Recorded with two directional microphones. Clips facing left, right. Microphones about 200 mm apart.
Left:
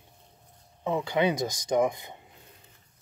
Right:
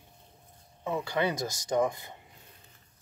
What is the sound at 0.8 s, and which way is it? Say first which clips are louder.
Speech: left 4 dB; 20° left (ahead or behind).